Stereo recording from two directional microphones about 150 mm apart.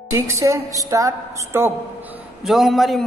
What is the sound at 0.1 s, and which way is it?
A woman's voice, 20° right (ahead or behind).